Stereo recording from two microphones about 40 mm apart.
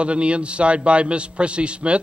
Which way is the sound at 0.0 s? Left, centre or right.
Right.